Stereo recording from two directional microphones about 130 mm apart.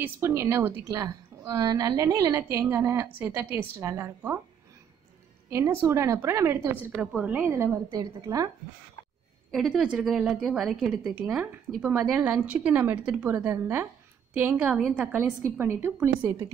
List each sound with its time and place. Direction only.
0.0 s a woman's voice: 20° right (ahead or behind)
5.5 s a woman's voice: 20° right (ahead or behind)
7.9 s a woman's voice: 30° right (ahead or behind)
9.5 s a woman's voice: centre (ahead or behind); by 16.5 s 20° right (ahead or behind)